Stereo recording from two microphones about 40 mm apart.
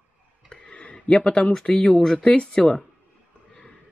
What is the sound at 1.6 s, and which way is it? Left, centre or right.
Speech, left.